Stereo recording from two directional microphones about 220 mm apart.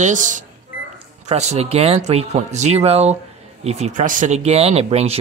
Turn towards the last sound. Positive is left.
turn(degrees=-30)  # may be behind; listen again after turning